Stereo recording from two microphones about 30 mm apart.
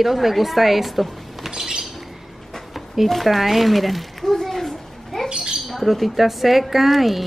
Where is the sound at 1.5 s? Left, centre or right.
Right.